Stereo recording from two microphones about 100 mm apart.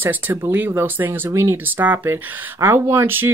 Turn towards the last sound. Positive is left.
turn(degrees=-25)  # may be behind; listen again after turning